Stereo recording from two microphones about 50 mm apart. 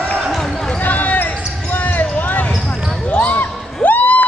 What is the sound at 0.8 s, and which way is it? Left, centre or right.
Basketball bounce, left.